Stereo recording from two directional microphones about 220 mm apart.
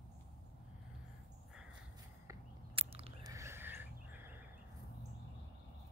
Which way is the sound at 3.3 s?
10° right (ahead or behind).